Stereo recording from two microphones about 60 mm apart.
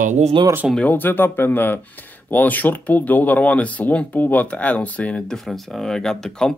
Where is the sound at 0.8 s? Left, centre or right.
Left.